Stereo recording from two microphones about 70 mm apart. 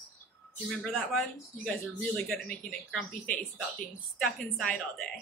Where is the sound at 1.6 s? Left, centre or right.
Centre.